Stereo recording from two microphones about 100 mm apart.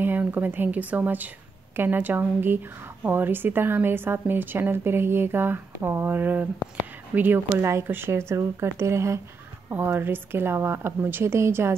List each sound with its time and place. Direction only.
0.0 s a woman's voice: 20° right (ahead or behind)